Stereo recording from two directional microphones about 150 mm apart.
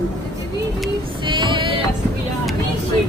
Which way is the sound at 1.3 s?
30° right (ahead or behind).